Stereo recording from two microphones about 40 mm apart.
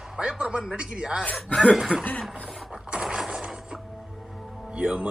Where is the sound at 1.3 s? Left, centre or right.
Centre.